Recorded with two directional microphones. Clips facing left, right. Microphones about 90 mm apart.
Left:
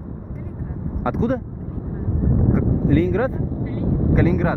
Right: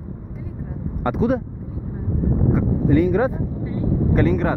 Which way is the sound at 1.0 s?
5° right (ahead or behind).